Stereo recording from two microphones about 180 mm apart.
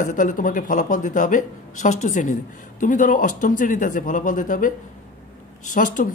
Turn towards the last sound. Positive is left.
turn(degrees=50)  # may be behind; listen again after turning